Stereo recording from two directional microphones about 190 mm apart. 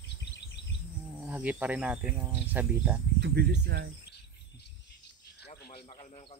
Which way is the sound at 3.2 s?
60° right (ahead or behind).